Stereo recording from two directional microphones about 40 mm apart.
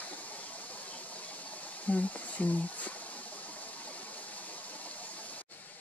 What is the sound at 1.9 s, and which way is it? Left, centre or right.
Speech, left.